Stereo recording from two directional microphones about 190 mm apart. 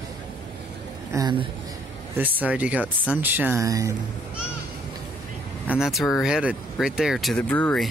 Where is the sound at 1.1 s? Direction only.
20° right (ahead or behind).